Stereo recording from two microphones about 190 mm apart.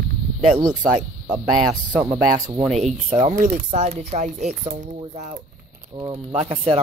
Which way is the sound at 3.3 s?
40° right (ahead or behind).